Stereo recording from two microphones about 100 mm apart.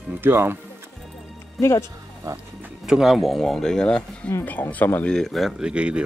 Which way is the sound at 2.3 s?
35° right (ahead or behind).